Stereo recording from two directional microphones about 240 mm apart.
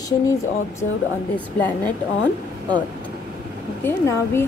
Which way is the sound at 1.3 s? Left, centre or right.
Centre.